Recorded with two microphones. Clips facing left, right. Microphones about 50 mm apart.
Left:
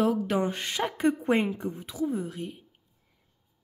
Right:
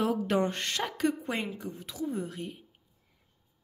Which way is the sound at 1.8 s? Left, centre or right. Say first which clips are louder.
Left 3 dB; centre.